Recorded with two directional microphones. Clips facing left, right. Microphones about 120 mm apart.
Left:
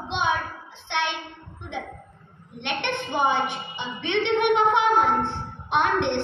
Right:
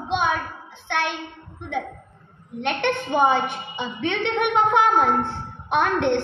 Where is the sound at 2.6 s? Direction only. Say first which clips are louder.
Right 5 dB; 45° right (ahead or behind).